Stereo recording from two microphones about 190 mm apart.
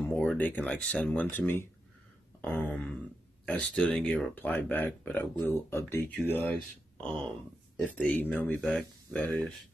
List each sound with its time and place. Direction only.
0.0 s speech: 5° left (ahead or behind)